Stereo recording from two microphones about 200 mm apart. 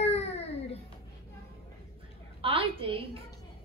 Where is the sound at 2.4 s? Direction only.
25° right (ahead or behind).